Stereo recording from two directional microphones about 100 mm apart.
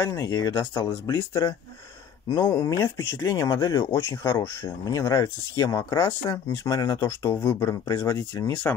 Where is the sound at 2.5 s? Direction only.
40° left (ahead or behind).